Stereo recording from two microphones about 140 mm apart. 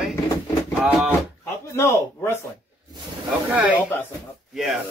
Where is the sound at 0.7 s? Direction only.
5° right (ahead or behind).